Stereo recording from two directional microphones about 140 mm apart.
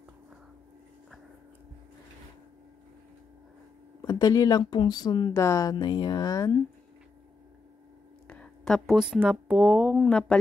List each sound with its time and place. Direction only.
4.0 s speech: 25° left (ahead or behind)
5.3 s speech: 20° left (ahead or behind)
8.3 s speech: 5° left (ahead or behind)